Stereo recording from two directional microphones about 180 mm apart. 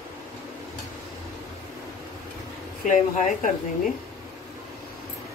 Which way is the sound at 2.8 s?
45° left (ahead or behind).